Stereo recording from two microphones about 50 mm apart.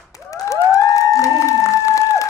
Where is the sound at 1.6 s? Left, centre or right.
Left.